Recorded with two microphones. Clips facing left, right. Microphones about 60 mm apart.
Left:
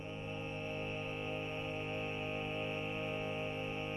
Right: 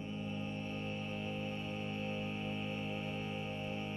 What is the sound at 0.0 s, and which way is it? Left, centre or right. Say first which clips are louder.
Music: right 2 dB; left.